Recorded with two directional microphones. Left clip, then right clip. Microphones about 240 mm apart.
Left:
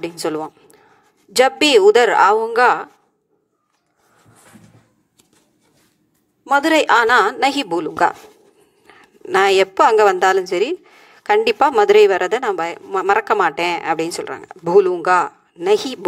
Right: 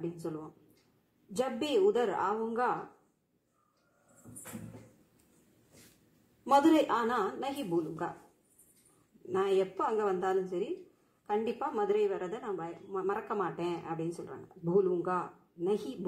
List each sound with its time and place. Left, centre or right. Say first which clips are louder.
1.3 s a woman's voice: left 19 dB; left
6.7 s a woman's voice: left 16 dB; left
9.3 s a woman's voice: left 16 dB; left